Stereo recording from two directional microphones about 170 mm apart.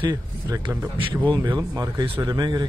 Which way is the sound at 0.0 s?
25° right (ahead or behind).